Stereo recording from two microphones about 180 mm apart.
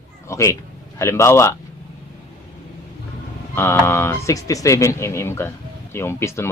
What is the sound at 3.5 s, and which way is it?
Speech, 15° left (ahead or behind).